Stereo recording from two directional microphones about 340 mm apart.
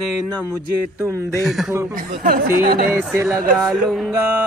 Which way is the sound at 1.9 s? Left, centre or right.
Right.